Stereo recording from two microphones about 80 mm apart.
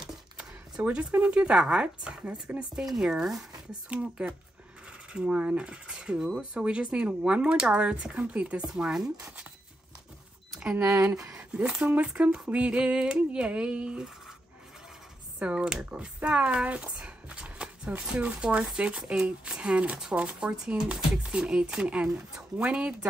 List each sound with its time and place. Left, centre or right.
0.0 s a sound: centre
0.8 s speech: centre
10.5 s cash register: centre
11.0 s speech: right
11.2 s speech: centre
15.3 s speech: centre